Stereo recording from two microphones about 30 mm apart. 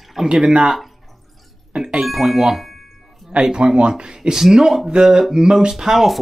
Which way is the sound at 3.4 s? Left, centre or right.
Right.